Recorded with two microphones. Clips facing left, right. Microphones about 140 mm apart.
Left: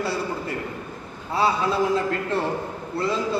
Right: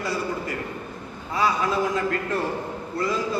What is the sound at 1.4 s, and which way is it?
A man's voice, 30° left (ahead or behind).